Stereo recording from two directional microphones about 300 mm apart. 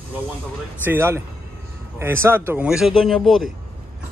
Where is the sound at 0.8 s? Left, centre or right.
Centre.